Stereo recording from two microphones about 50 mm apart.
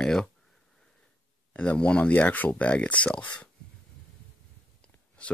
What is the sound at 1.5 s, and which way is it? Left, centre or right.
Speech, left.